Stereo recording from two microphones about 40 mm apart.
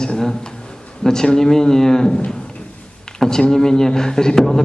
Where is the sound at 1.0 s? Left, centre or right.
Centre.